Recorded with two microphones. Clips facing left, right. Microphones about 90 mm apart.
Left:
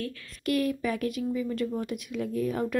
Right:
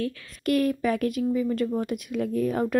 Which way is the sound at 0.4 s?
45° right (ahead or behind).